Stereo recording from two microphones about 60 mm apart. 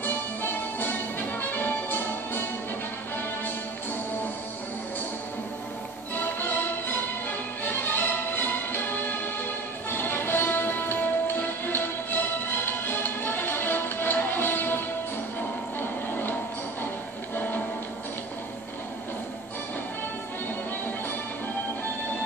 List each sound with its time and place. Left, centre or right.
0.0 s music: left
6.1 s music: left
15.8 s music: left